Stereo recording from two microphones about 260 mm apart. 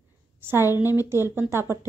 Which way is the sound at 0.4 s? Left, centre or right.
Centre.